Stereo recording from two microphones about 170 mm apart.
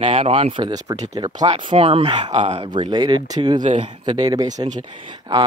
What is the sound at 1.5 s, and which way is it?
Speech, 30° right (ahead or behind).